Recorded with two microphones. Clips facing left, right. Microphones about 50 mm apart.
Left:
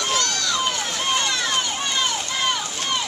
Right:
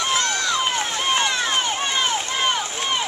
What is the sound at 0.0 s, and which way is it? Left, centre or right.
Run, right.